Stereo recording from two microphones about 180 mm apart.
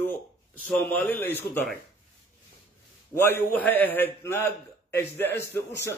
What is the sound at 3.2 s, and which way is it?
A man's voice, 10° left (ahead or behind).